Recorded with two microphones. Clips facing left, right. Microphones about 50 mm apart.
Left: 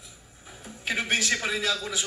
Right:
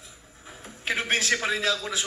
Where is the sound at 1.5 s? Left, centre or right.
Right.